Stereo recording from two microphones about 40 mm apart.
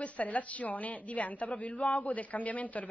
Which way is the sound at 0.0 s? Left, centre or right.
Left.